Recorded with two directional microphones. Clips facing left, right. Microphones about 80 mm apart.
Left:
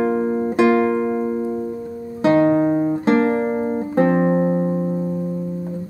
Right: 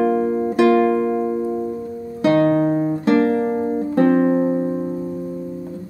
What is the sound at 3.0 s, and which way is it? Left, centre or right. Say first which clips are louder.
Music: right 2 dB; left.